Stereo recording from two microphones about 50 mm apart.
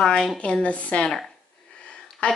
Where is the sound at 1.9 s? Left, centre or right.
Centre.